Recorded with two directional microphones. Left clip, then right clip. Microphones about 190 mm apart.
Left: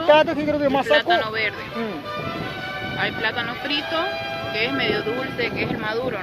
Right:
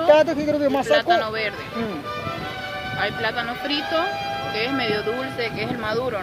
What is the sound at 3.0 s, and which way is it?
Speech, 70° right (ahead or behind).